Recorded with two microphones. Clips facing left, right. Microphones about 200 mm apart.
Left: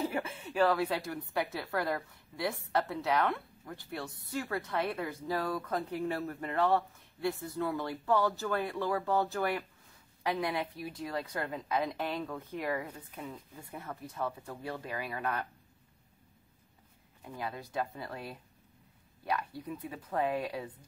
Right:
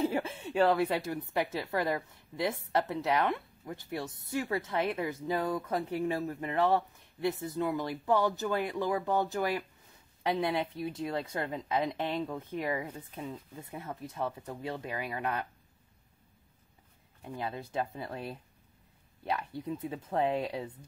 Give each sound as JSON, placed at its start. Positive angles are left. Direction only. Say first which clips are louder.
{"t": 0.0, "sound": "a woman's voice", "louder": "right 4 dB", "side_deg": -30}
{"t": 17.4, "sound": "a woman's voice", "louder": "right 1 dB", "side_deg": -25}